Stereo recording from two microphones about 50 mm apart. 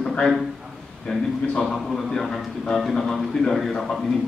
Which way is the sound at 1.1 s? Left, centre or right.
Centre.